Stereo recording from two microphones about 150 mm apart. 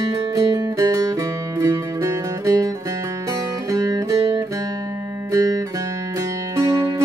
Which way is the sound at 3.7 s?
25° right (ahead or behind).